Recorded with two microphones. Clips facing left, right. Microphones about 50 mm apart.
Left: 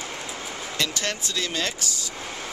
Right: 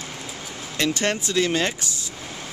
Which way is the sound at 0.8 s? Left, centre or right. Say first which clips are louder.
Right 6 dB; right.